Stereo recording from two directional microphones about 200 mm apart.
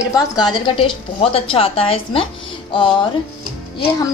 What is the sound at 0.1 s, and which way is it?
A woman's voice, 20° left (ahead or behind).